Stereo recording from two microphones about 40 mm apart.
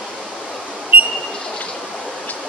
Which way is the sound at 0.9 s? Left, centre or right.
Right.